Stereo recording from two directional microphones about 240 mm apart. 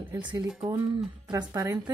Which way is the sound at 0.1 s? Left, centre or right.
Centre.